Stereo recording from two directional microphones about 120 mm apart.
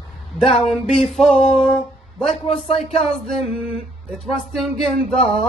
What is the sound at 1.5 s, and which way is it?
Music, 60° left (ahead or behind).